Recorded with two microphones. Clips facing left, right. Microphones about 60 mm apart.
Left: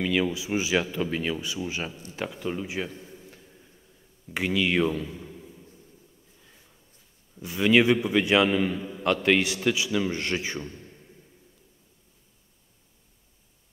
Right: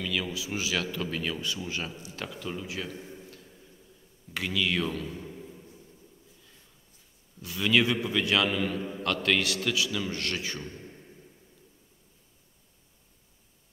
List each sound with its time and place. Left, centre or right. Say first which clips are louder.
0.0 s a man's voice: left 6 dB; left
4.3 s a man's voice: left 4 dB; left
4.8 s speech: left 5 dB; centre
5.3 s a sound: right 1 dB; centre
7.3 s a man's voice: left 5 dB; left